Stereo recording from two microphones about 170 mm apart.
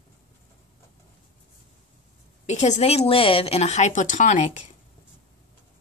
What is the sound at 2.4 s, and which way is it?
Speech, 45° left (ahead or behind).